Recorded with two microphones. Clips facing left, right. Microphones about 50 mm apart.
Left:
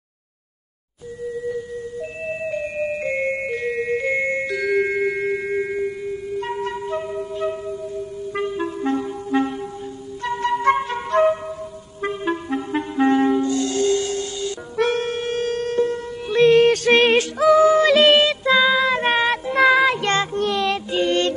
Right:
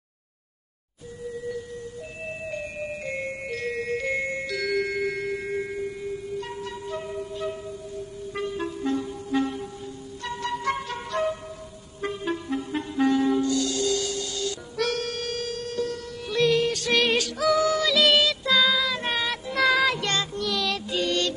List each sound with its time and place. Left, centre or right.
2.5 s music: left
3.5 s music: left
7.0 s wind instrument: left
8.6 s clarinet: left
10.2 s music: left
10.9 s flute: left
12.0 s clarinet: left
13.3 s music: left